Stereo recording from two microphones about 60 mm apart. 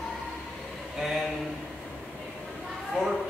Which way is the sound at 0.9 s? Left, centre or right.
Centre.